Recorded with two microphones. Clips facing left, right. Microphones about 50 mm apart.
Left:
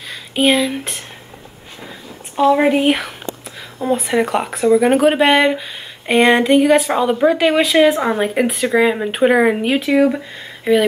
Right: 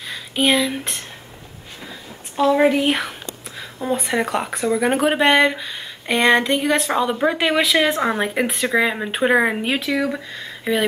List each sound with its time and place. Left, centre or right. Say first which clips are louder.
0.1 s speech: left 3 dB; centre
2.4 s speech: left 4 dB; centre
2.9 s speech: left 4 dB; centre
7.2 s speech: left 5 dB; centre
9.8 s speech: left 7 dB; left
10.0 s speech: left 7 dB; centre